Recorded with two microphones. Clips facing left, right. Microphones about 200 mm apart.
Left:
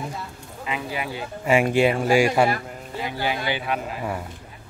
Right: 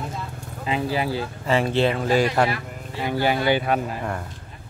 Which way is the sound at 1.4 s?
15° left (ahead or behind).